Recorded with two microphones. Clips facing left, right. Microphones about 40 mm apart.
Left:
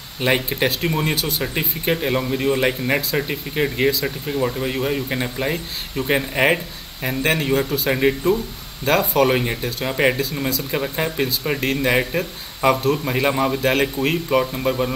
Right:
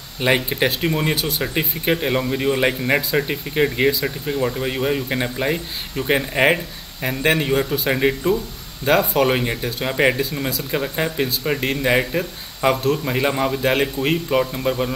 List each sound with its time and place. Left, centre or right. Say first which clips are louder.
0.2 s speech: right 1 dB; centre